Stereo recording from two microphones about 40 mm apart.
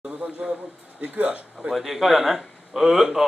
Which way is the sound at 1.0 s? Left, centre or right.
Right.